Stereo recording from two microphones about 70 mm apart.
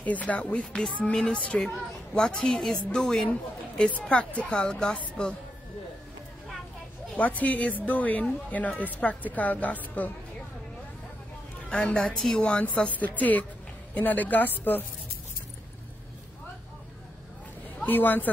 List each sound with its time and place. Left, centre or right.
0.0 s a woman's voice: left
7.2 s a woman's voice: left
11.7 s a woman's voice: centre
17.8 s a woman's voice: left